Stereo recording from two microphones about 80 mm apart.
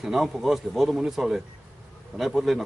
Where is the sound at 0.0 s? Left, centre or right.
Centre.